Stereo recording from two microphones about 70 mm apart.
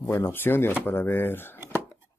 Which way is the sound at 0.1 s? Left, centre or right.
Left.